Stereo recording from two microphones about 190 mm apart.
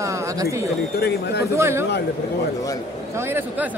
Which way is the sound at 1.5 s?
15° right (ahead or behind).